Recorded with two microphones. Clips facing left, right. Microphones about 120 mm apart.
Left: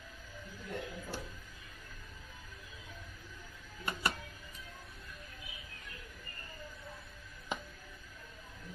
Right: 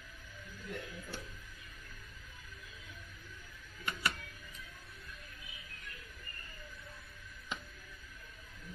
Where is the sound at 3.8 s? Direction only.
40° left (ahead or behind).